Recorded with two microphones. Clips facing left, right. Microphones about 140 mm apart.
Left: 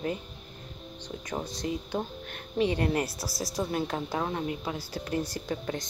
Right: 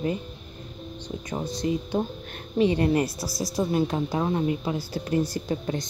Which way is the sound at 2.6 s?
30° right (ahead or behind).